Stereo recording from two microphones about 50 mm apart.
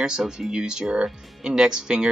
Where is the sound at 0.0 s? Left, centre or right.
Centre.